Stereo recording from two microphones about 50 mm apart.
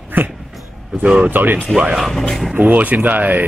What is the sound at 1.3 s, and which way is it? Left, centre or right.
Speech, right.